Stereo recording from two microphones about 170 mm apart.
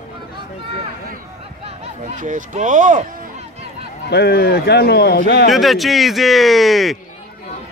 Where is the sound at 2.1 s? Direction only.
50° right (ahead or behind).